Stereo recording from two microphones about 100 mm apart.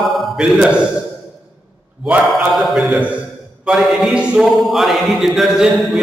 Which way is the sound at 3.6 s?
Centre (ahead or behind).